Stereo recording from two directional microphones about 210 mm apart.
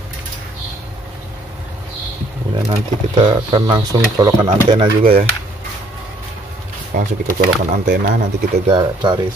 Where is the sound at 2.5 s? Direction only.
20° right (ahead or behind).